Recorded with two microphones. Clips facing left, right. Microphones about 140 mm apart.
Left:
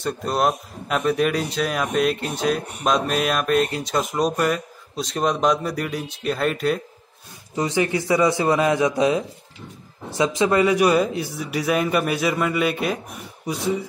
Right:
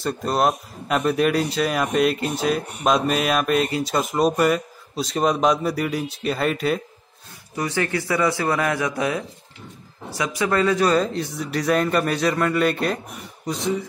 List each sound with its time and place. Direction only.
0.0 s speech: centre (ahead or behind)
7.5 s a man's voice: 20° left (ahead or behind)